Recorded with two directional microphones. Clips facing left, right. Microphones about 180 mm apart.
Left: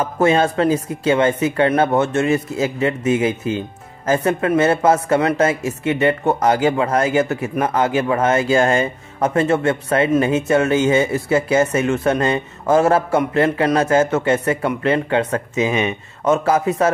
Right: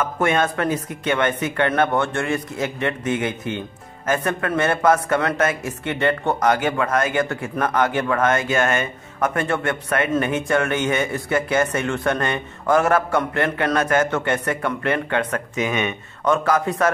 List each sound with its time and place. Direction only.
0.0 s speech: 30° left (ahead or behind)